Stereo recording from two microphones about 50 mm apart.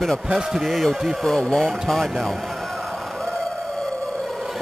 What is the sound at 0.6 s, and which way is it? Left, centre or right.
Speech, centre.